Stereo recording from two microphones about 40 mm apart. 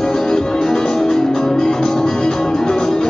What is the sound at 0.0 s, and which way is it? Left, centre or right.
Music, centre.